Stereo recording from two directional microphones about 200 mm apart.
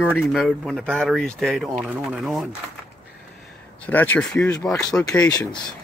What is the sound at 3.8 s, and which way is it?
Speech, 10° left (ahead or behind).